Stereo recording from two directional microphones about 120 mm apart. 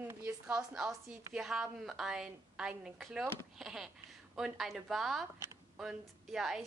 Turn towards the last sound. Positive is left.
turn(degrees=0)  # may be behind; listen again after turning